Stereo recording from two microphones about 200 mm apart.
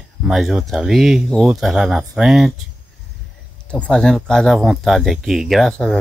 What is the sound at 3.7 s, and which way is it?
Speech, 5° left (ahead or behind).